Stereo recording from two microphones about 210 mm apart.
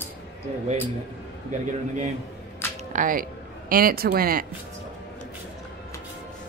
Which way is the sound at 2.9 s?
40° right (ahead or behind).